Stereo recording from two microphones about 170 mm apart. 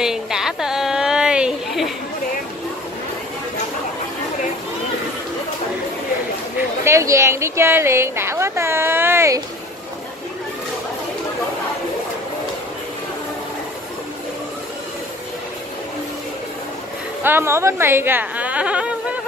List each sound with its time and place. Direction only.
0.0 s a sound: 5° right (ahead or behind)
6.8 s a woman's voice: 15° right (ahead or behind)
17.2 s a woman's voice: 15° right (ahead or behind)